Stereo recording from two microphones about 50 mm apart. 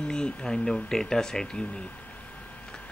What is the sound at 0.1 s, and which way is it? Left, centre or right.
Speech, centre.